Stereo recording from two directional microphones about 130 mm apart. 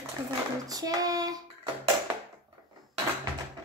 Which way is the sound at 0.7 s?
30° right (ahead or behind).